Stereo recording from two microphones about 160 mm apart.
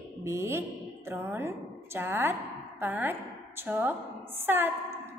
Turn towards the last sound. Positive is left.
turn(degrees=-15)  # may be behind; listen again after turning